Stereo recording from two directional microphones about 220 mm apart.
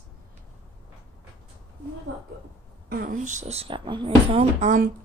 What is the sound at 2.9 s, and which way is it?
Speech, 40° right (ahead or behind).